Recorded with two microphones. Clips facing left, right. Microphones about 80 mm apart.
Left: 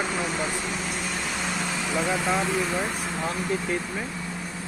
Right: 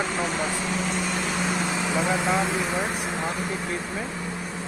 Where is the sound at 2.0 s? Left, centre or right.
Centre.